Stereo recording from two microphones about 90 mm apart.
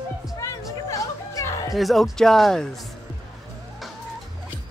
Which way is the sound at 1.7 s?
Centre (ahead or behind).